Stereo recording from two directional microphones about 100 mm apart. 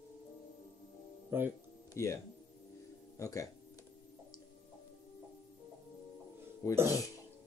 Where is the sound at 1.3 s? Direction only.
25° right (ahead or behind).